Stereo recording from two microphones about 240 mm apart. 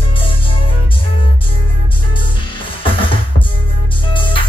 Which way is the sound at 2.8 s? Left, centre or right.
Left.